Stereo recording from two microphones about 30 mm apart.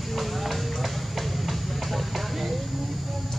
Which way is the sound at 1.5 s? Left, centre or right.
Centre.